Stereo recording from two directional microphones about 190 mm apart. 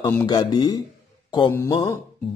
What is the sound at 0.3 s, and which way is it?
Speech, 25° left (ahead or behind).